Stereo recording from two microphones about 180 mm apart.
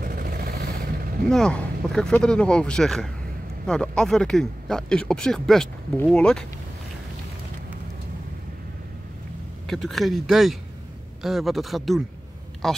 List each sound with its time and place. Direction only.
0.0 s vehicle: 55° right (ahead or behind)
1.3 s speech: 5° left (ahead or behind)
9.7 s speech: centre (ahead or behind)